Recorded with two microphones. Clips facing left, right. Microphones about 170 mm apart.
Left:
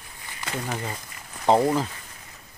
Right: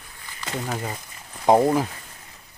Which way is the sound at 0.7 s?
15° right (ahead or behind).